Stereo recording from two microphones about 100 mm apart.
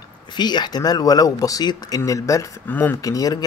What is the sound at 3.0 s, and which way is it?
Speech, 35° left (ahead or behind).